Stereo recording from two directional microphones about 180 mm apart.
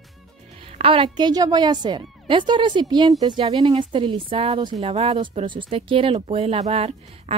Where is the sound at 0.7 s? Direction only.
30° right (ahead or behind).